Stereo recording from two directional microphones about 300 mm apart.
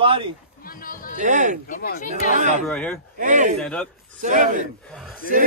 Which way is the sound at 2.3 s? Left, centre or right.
Right.